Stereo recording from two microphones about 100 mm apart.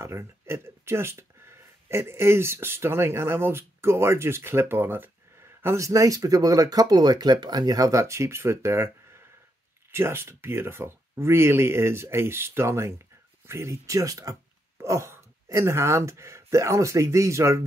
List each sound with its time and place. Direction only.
0.0 s speech: 30° right (ahead or behind)